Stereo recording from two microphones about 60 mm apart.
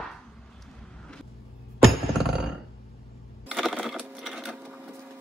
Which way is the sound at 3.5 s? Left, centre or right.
Centre.